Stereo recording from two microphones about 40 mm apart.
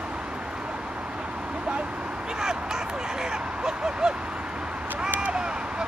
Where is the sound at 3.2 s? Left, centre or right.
Centre.